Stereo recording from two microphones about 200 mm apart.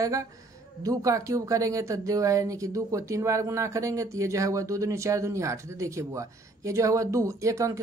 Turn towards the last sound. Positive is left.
turn(degrees=-15)  # may be behind; listen again after turning